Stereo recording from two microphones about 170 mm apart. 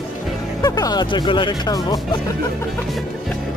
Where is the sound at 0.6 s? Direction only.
20° left (ahead or behind).